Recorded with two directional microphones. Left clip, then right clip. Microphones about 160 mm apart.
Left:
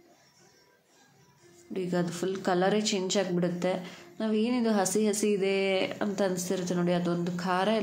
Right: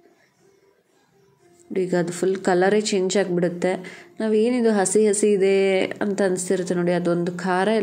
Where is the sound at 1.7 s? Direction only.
25° right (ahead or behind).